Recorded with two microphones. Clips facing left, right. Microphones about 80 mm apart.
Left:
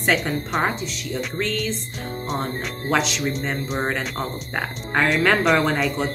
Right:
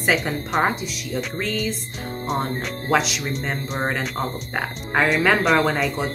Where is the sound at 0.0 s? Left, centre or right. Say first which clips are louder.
Even; centre.